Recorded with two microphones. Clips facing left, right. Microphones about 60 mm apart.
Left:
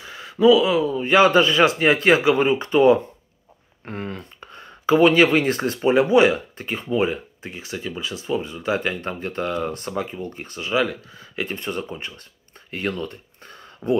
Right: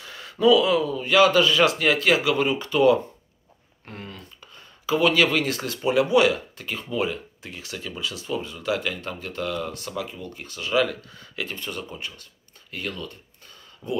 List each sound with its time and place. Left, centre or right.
0.0 s speech: centre
1.0 s speech: left
10.6 s speech: centre
11.4 s speech: left